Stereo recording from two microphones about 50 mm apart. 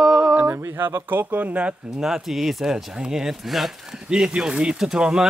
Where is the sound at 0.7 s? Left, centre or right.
Right.